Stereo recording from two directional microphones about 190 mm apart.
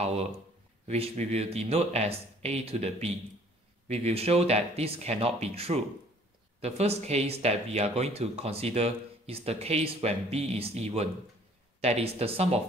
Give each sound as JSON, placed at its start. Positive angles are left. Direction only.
{"t": 0.0, "sound": "speech", "side_deg": -35}